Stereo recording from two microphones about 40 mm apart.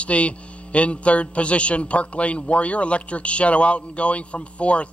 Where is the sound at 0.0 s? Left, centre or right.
Left.